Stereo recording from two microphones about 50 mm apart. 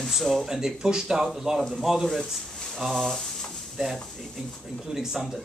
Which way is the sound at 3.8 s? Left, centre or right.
Centre.